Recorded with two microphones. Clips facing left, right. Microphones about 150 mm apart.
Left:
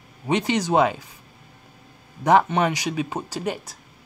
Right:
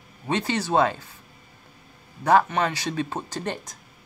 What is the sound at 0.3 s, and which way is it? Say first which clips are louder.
Speech: left 3 dB; 15° left (ahead or behind).